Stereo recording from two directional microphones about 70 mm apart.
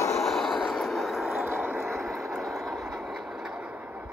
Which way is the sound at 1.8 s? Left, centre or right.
Centre.